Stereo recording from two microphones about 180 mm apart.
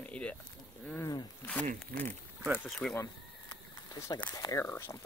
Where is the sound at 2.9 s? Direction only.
20° left (ahead or behind).